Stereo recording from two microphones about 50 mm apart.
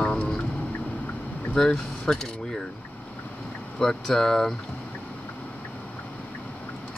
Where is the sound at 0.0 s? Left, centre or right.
Left.